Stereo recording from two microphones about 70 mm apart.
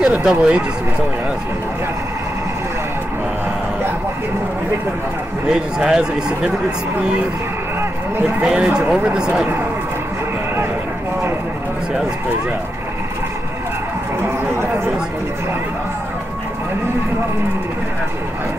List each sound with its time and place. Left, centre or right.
0.0 s speech: centre
5.5 s speech: centre
8.5 s speech: centre
14.2 s speech: right